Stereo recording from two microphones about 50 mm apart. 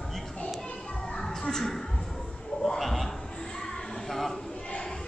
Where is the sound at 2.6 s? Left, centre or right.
Centre.